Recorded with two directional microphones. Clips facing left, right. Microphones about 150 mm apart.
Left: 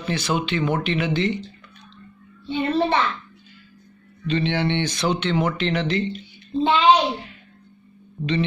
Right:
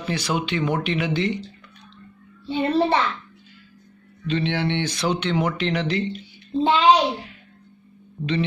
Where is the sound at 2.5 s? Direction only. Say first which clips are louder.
Right 1 dB; 35° right (ahead or behind).